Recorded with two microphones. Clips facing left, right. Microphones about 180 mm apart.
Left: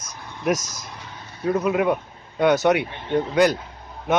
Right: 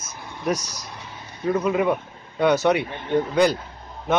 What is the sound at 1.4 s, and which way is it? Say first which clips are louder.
A man's voice: even; 5° left (ahead or behind).